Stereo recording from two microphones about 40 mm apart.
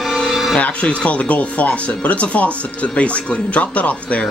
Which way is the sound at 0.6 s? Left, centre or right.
Left.